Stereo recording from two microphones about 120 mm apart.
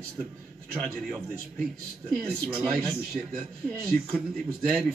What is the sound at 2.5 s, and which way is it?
Speech, 5° left (ahead or behind).